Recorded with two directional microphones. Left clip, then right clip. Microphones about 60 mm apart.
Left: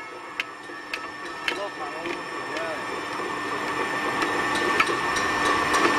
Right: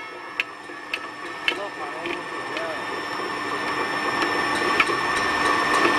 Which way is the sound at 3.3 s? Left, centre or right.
Centre.